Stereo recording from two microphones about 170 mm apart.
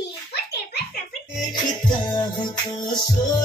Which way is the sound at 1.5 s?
25° left (ahead or behind).